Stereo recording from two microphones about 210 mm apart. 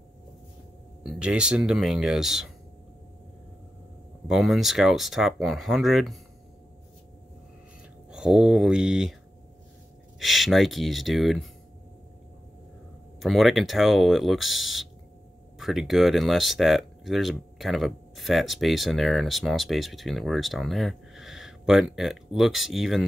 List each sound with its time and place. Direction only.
1.0 s speech: 5° right (ahead or behind)
4.3 s speech: centre (ahead or behind)
8.1 s speech: 5° right (ahead or behind)
10.1 s speech: centre (ahead or behind)
13.2 s speech: centre (ahead or behind)